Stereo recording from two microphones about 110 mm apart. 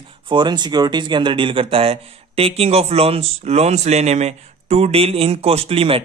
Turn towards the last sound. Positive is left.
turn(degrees=-60)  # may be behind; listen again after turning